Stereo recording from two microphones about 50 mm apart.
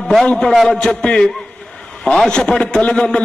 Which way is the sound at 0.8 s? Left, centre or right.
Centre.